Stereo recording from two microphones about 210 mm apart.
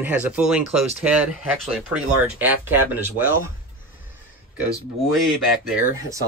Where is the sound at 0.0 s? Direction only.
5° right (ahead or behind).